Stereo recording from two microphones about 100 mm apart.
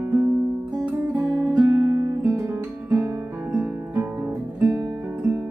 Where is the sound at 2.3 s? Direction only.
15° right (ahead or behind).